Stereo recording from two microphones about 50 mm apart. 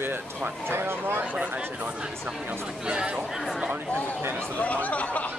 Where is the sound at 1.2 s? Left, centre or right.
Right.